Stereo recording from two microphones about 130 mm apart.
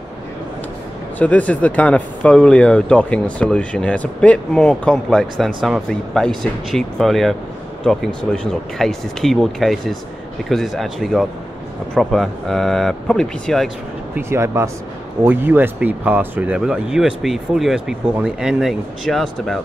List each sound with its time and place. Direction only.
1.1 s speech: 10° left (ahead or behind)
14.1 s speech: 20° right (ahead or behind); by 19.6 s 5° left (ahead or behind)